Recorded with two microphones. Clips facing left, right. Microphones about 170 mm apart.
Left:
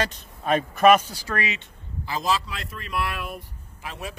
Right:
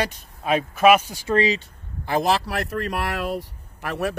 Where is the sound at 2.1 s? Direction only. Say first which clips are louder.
Right 5 dB; 65° right (ahead or behind).